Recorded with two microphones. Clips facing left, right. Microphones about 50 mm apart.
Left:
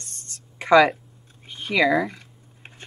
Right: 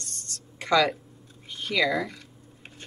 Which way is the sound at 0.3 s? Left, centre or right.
Left.